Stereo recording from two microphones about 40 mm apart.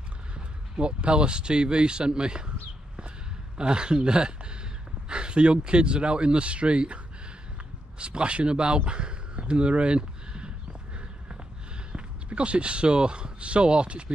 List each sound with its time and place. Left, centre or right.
0.7 s speech: right
3.5 s speech: right
8.0 s speech: right
11.9 s speech: right